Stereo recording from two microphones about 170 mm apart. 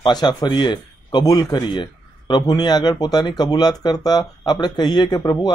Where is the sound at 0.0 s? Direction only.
25° left (ahead or behind).